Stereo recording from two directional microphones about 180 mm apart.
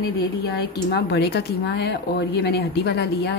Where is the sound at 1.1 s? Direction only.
65° left (ahead or behind).